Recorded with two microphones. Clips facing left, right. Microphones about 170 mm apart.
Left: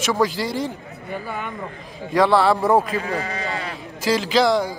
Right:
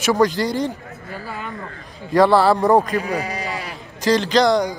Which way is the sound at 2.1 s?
Centre (ahead or behind).